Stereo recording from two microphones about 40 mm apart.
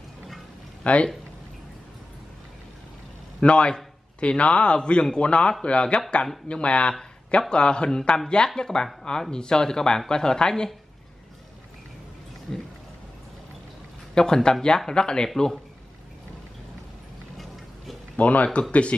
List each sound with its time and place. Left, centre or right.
0.8 s speech: left
3.4 s speech: left
14.1 s speech: centre
18.1 s speech: left